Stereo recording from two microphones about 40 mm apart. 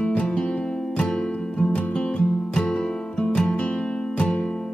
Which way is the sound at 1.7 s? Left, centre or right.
Left.